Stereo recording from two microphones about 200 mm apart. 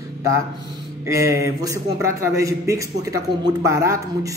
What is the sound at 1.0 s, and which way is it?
A man's voice, 15° right (ahead or behind).